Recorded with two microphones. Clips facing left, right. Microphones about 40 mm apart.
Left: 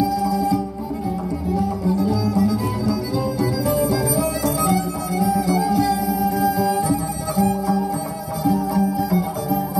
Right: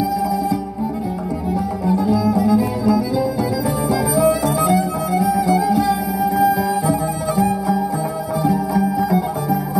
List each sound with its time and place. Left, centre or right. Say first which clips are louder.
0.0 s music: right 1 dB; right